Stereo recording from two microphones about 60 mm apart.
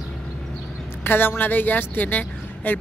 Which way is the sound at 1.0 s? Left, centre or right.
Left.